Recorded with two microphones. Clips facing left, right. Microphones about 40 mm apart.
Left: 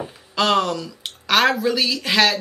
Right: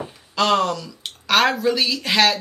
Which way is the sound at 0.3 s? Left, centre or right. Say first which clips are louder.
Even; centre.